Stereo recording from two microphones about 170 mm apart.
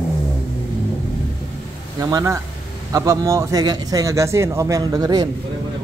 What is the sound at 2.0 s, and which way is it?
A man's voice, 20° right (ahead or behind).